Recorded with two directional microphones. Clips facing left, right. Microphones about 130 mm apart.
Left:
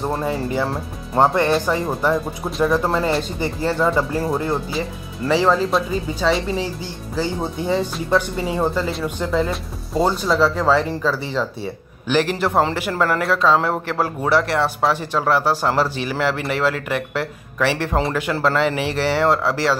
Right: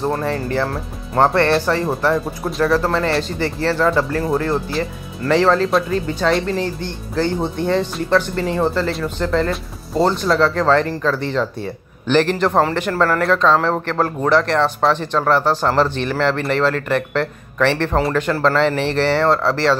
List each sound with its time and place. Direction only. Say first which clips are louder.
0.0 s speech: right 2 dB; 5° left (ahead or behind)
2.6 s speech: right 1 dB; 15° left (ahead or behind)
4.8 s speech: right 2 dB; centre (ahead or behind)